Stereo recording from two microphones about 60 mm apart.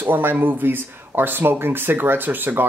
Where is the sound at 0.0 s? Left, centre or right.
Right.